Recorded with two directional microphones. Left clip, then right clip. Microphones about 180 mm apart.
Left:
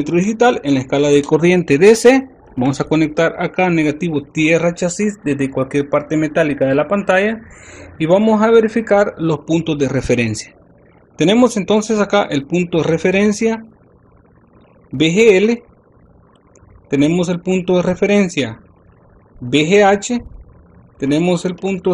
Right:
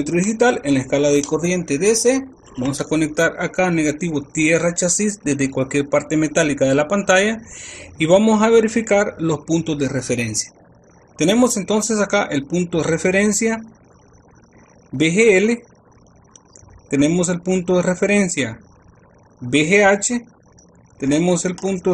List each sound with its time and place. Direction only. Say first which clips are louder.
0.0 s speech: left 3 dB; 20° left (ahead or behind)
1.1 s speech: left 6 dB; 45° left (ahead or behind)
2.6 s speech: left 5 dB; 30° left (ahead or behind); by 9.8 s 10° left (ahead or behind)
9.8 s speech: left 5 dB; 30° left (ahead or behind)
11.1 s speech: left 4 dB; 25° left (ahead or behind)
15.0 s speech: left 3 dB; 15° left (ahead or behind)
16.9 s speech: left 2 dB; 15° left (ahead or behind)